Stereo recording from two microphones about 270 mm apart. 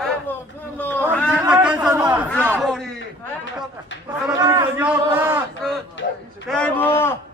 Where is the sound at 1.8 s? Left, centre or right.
Centre.